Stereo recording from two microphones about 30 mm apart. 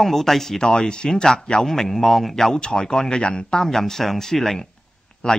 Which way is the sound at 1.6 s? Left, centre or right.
Centre.